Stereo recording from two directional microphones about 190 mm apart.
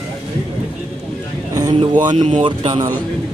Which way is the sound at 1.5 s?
20° right (ahead or behind).